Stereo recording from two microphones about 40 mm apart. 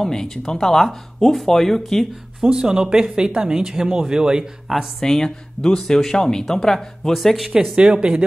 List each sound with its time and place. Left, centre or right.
0.0 s speech: centre
2.4 s speech: centre
4.7 s speech: centre
5.0 s speech: centre
7.2 s speech: centre
7.7 s speech: right